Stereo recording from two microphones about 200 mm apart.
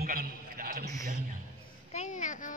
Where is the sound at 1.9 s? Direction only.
40° left (ahead or behind).